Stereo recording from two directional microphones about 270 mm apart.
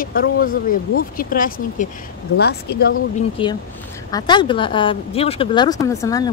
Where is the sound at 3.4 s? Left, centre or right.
Centre.